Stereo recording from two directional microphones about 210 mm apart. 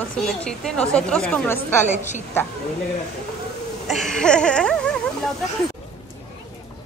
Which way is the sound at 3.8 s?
Centre (ahead or behind).